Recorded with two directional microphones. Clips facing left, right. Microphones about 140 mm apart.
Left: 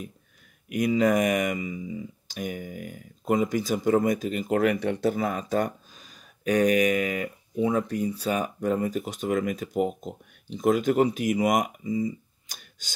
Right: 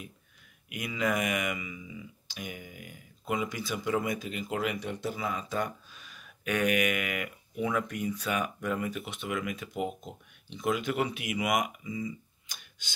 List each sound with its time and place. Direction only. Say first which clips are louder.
0.7 s speech: left 9 dB; 40° left (ahead or behind)